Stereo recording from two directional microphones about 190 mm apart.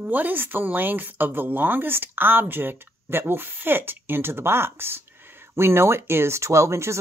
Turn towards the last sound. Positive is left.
turn(degrees=-15)  # may be behind; listen again after turning